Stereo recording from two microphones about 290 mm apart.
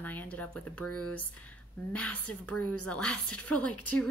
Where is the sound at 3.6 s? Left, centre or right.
Left.